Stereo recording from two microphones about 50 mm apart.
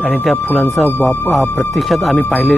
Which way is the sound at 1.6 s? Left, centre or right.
Centre.